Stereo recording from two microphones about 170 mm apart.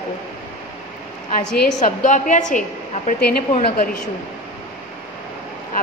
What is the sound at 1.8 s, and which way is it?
Speech, 45° left (ahead or behind).